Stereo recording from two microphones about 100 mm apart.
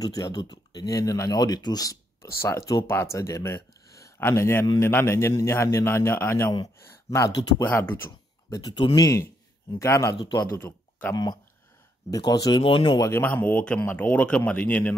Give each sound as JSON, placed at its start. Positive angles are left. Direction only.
{"t": 0.0, "sound": "speech", "side_deg": 40}
{"t": 2.4, "sound": "a man's voice", "side_deg": 25}
{"t": 7.7, "sound": "speech", "side_deg": 25}
{"t": 8.5, "sound": "a man's voice", "side_deg": 50}
{"t": 8.9, "sound": "speech", "side_deg": 35}
{"t": 10.2, "sound": "a man's voice", "side_deg": 40}
{"t": 10.6, "sound": "speech", "side_deg": 20}
{"t": 12.1, "sound": "speech", "side_deg": 40}
{"t": 12.6, "sound": "speech", "side_deg": 60}
{"t": 13.2, "sound": "speech", "side_deg": 20}